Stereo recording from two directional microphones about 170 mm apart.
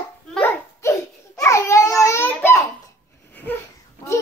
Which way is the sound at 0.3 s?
15° left (ahead or behind).